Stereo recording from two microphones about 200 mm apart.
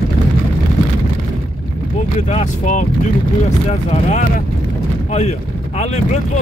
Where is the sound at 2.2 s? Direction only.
35° left (ahead or behind).